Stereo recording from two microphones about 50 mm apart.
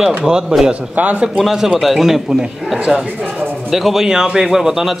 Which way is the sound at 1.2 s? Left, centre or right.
Centre.